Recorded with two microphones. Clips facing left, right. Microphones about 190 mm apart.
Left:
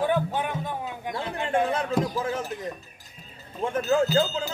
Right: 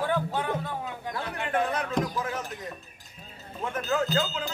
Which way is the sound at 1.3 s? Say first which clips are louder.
Left 3 dB; 25° left (ahead or behind).